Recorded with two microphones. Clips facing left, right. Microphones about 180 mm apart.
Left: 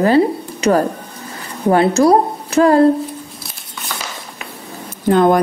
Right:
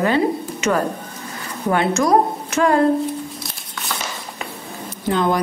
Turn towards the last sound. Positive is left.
turn(degrees=50)  # may be behind; listen again after turning